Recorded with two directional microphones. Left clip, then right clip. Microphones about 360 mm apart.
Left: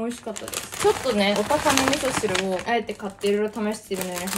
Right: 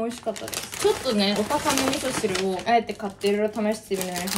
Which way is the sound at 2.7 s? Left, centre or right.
Centre.